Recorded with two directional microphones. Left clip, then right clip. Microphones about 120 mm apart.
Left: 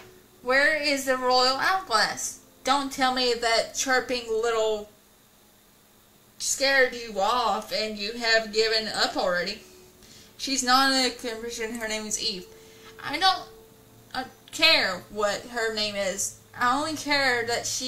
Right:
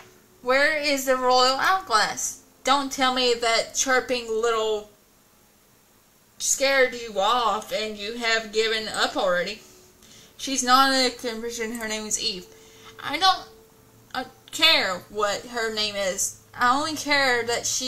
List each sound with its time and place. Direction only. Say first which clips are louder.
0.5 s a woman's voice: right 1 dB; 25° right (ahead or behind)
6.4 s a woman's voice: right 1 dB; 25° right (ahead or behind)
10.4 s a woman's voice: right 3 dB; 25° right (ahead or behind)